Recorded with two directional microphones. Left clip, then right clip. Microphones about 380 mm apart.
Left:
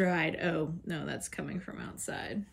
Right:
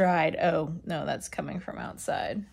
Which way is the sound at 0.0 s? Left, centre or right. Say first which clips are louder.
Right 7 dB; centre.